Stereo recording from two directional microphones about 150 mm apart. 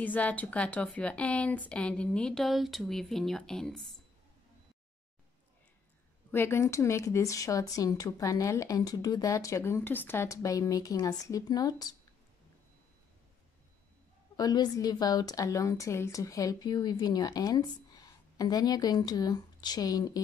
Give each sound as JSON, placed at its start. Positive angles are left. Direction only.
{"t": 0.0, "sound": "a woman's voice", "side_deg": 10}
{"t": 6.3, "sound": "a woman's voice", "side_deg": 15}
{"t": 14.3, "sound": "a woman's voice", "side_deg": 25}